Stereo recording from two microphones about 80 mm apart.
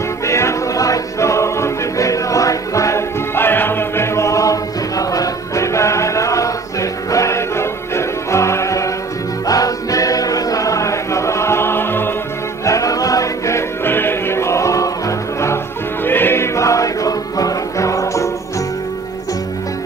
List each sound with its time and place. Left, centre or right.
0.3 s music: left
3.3 s music: left
12.6 s music: left